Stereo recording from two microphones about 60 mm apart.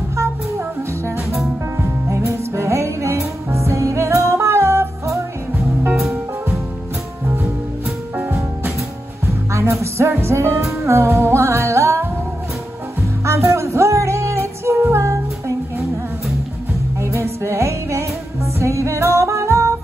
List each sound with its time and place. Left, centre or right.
2.0 s music: right
5.9 s music: centre
9.2 s music: right
13.2 s music: right
17.0 s music: right